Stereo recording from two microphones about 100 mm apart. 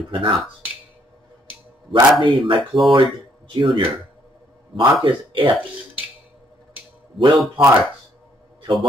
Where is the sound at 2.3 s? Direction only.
60° right (ahead or behind).